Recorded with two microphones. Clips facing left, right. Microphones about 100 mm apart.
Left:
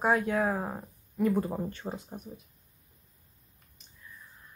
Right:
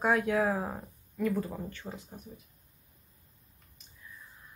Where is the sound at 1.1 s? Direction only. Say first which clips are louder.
Left 4 dB; 20° left (ahead or behind).